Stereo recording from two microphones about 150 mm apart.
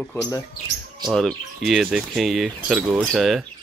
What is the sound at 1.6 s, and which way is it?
Speech, centre (ahead or behind).